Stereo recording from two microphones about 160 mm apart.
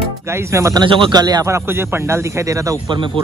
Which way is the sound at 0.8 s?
30° right (ahead or behind).